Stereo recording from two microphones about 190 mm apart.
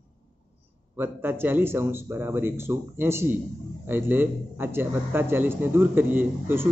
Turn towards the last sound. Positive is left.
turn(degrees=-10)  # may be behind; listen again after turning